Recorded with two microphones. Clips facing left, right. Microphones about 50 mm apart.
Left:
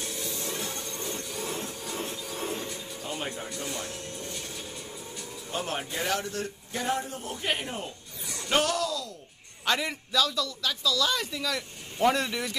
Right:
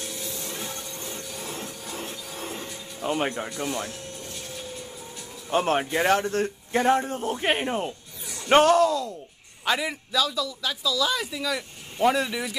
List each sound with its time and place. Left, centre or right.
0.4 s a sound: centre
3.1 s a man's voice: right
3.6 s speech: centre
5.5 s a man's voice: right
9.7 s a man's voice: centre